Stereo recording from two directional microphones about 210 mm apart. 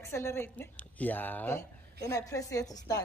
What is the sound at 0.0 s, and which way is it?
Speech, 10° left (ahead or behind).